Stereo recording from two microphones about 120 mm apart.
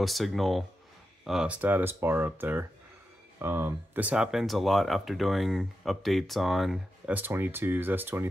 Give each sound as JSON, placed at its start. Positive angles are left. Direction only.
{"t": 0.0, "sound": "speech", "side_deg": 0}
{"t": 7.1, "sound": "speech", "side_deg": -15}